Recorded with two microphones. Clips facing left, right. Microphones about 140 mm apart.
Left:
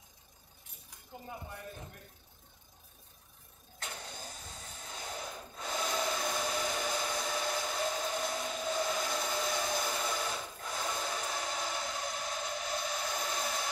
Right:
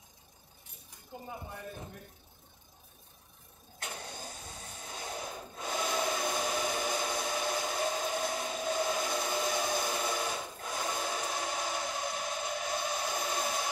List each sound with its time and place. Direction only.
1.2 s speech: 25° right (ahead or behind)
3.8 s vehicle: 15° right (ahead or behind)
4.9 s a sound: 20° right (ahead or behind)